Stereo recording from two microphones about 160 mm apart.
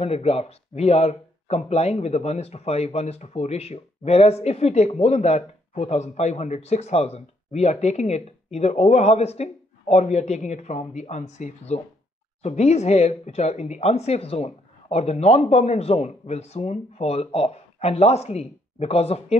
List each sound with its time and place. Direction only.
0.0 s speech: 40° left (ahead or behind)